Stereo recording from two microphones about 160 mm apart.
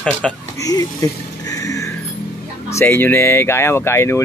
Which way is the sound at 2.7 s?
15° left (ahead or behind).